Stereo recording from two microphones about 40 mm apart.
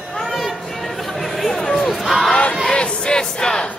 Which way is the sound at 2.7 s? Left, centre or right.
Left.